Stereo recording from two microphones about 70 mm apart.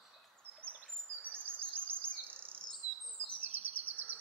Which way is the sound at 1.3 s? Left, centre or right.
Right.